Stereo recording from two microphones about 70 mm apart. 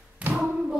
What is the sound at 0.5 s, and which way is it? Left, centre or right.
Tap, centre.